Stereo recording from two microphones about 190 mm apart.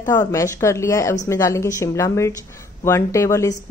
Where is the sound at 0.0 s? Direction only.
20° left (ahead or behind).